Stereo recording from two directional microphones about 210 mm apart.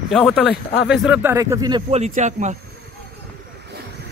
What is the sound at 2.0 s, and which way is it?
Speech, 35° right (ahead or behind).